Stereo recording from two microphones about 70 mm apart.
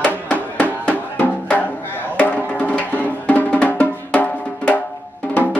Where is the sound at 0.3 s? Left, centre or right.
Left.